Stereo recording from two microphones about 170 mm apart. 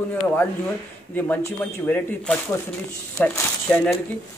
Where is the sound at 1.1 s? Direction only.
10° left (ahead or behind).